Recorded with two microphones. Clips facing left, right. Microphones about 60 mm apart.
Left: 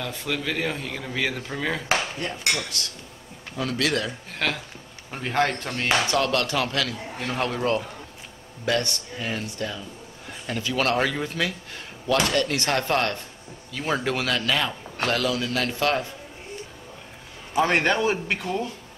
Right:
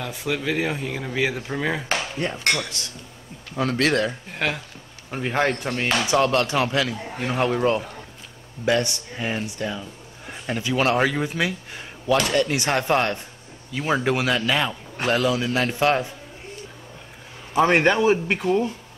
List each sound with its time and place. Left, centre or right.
0.0 s a man's voice: centre
2.2 s a man's voice: right
3.5 s speech: right
4.3 s a man's voice: centre
17.6 s a man's voice: centre